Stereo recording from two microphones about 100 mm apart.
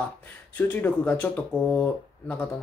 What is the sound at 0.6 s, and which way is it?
Speech, 15° left (ahead or behind).